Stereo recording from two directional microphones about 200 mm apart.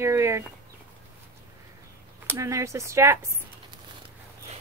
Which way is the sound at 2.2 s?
15° right (ahead or behind).